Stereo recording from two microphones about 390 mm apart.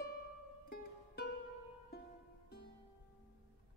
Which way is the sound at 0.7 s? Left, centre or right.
Left.